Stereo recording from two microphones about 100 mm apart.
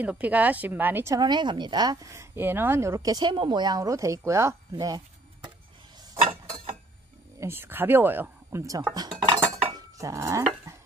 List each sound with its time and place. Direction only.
0.0 s a woman's voice: 15° right (ahead or behind)
1.1 s a woman's voice: 45° right (ahead or behind)
7.3 s speech: 25° right (ahead or behind)
9.5 s cutlery: 35° right (ahead or behind)